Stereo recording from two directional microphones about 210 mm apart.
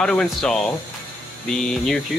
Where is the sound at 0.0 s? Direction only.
5° left (ahead or behind).